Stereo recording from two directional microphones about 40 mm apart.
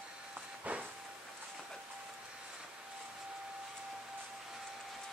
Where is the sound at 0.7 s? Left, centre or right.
Right.